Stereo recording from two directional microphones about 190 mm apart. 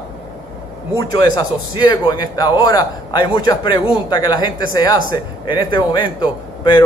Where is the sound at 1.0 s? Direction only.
20° left (ahead or behind).